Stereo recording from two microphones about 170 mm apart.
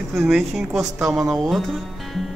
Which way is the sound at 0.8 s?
15° right (ahead or behind).